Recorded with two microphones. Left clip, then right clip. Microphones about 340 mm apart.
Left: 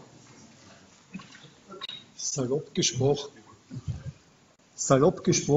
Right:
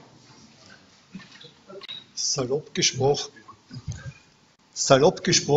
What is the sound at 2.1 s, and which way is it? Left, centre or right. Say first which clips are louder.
Speech: right 4 dB; centre.